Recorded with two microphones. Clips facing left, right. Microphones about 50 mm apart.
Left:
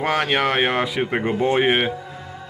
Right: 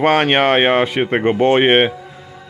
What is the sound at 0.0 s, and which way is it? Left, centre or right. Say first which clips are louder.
Speech: right 6 dB; right.